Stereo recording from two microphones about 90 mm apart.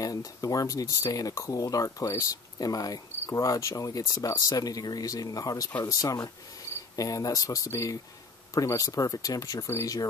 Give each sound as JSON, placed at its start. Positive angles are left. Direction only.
{"t": 0.0, "sound": "speech", "side_deg": 40}